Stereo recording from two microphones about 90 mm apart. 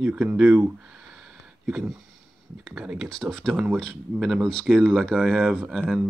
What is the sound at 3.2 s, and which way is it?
Speech, 5° left (ahead or behind).